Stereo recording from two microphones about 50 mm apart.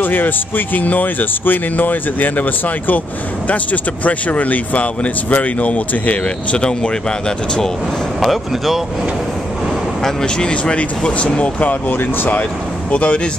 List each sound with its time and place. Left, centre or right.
0.0 s speech: left; by 7.7 s centre
8.2 s speech: centre
10.0 s speech: centre
11.9 s speech: left
12.9 s speech: left